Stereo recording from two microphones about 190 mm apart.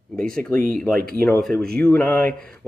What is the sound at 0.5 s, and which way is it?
Speech, 45° right (ahead or behind).